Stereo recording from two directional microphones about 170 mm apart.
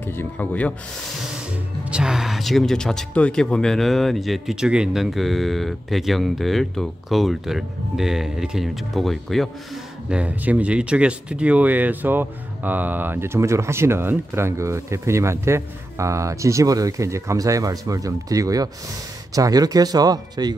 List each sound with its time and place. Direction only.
0.0 s speech: 15° left (ahead or behind)
1.9 s speech: 5° right (ahead or behind); by 20.5 s 25° right (ahead or behind)